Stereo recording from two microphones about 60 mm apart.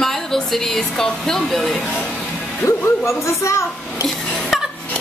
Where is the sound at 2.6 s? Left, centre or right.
Left.